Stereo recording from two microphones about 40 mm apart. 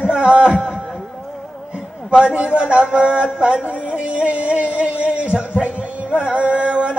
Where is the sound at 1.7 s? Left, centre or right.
Right.